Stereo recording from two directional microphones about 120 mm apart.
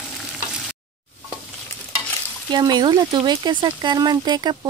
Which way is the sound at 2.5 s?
40° right (ahead or behind).